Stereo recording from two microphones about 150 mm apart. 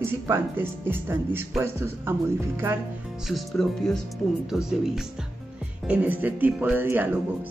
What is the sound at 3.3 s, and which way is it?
Speech, centre (ahead or behind).